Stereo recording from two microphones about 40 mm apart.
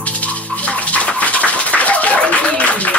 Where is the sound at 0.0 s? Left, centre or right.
Left.